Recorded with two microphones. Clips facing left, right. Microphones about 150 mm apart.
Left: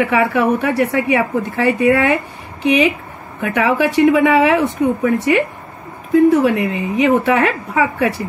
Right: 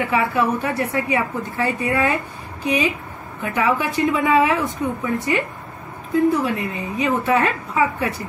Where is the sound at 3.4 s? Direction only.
85° left.